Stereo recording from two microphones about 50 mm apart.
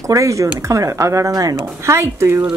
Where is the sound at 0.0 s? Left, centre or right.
Right.